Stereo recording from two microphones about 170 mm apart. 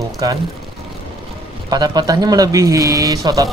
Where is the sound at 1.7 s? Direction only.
25° right (ahead or behind).